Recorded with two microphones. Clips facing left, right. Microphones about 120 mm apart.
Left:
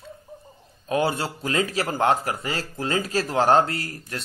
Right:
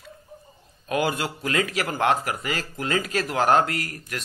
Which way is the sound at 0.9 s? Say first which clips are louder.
Left 1 dB; 30° left (ahead or behind).